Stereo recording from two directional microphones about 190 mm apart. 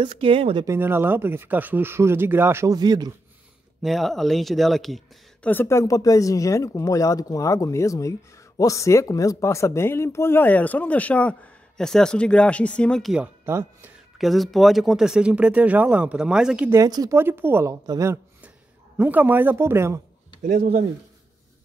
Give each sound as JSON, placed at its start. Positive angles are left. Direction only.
{"t": 0.0, "sound": "speech", "side_deg": -30}
{"t": 0.7, "sound": "speech", "side_deg": -10}
{"t": 3.8, "sound": "speech", "side_deg": 0}
{"t": 13.5, "sound": "speech", "side_deg": -15}
{"t": 14.1, "sound": "speech", "side_deg": 0}
{"t": 16.7, "sound": "speech", "side_deg": -20}
{"t": 20.4, "sound": "speech", "side_deg": -40}